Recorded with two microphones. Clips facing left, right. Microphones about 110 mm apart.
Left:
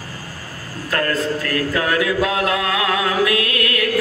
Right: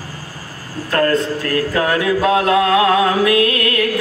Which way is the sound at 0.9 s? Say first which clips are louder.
Right 4 dB; 30° right (ahead or behind).